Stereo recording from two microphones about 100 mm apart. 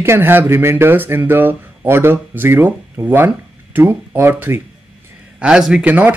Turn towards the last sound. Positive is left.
turn(degrees=-15)  # may be behind; listen again after turning